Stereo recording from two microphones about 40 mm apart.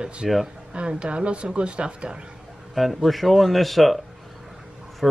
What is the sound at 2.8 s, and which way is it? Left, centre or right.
Speech, centre.